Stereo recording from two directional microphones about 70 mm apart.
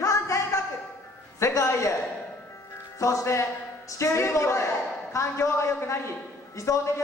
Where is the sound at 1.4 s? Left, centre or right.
Left.